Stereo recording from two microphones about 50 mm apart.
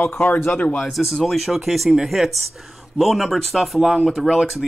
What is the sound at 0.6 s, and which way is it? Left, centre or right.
Speech, left.